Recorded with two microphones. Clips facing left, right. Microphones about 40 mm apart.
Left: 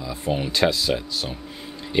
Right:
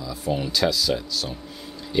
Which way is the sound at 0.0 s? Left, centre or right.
Left.